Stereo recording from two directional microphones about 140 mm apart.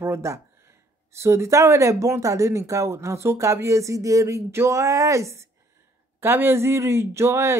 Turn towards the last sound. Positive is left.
turn(degrees=-20)  # may be behind; listen again after turning